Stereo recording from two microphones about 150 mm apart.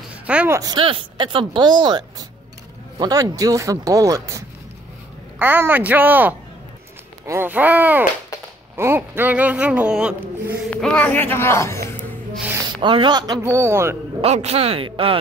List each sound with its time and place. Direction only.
0.1 s a sound: 10° right (ahead or behind)
0.6 s speech: 30° right (ahead or behind); by 10.1 s 5° right (ahead or behind)
10.7 s speech: 5° left (ahead or behind)
12.8 s speech: 30° right (ahead or behind)
13.4 s speech: 20° right (ahead or behind)
14.2 s speech: 45° right (ahead or behind)